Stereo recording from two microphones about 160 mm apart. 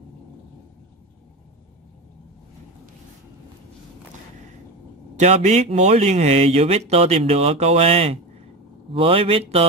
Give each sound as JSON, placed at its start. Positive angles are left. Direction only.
{"t": 5.1, "sound": "a man's voice", "side_deg": -45}